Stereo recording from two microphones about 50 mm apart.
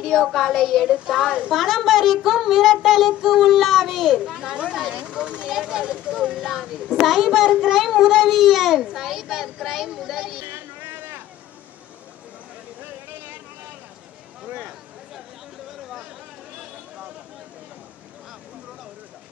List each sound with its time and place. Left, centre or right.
0.0 s speech: centre
1.1 s speech: centre
1.5 s speech: centre
4.2 s speech: centre
5.0 s speech: right
5.5 s speech: centre
6.4 s speech: centre
10.4 s a sound: right